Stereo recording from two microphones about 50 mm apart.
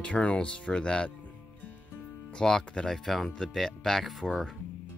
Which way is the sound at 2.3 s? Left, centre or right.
Centre.